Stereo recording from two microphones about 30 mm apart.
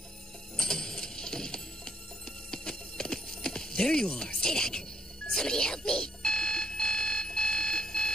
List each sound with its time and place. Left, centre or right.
0.6 s a sound: centre
2.5 s clip-clop: left
4.4 s speech: left
5.3 s alarm clock: left